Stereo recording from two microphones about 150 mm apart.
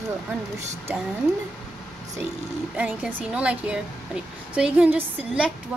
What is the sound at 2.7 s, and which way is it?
Speech, 10° right (ahead or behind).